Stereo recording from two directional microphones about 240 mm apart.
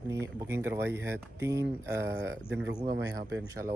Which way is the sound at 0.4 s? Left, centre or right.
Centre.